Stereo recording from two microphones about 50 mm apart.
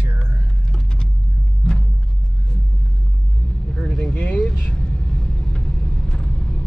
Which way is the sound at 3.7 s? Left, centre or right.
Centre.